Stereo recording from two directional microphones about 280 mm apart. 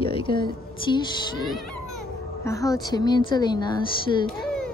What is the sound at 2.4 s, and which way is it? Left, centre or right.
A woman's voice, centre.